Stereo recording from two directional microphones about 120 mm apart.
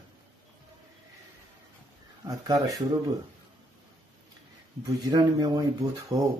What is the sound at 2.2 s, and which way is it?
Speech, 25° right (ahead or behind).